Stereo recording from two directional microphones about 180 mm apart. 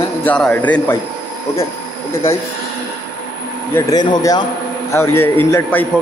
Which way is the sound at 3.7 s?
20° left (ahead or behind).